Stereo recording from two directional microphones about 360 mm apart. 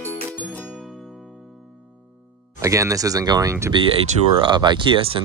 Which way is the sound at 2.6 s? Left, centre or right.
Centre.